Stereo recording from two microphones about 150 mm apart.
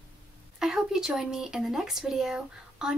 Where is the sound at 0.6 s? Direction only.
5° right (ahead or behind).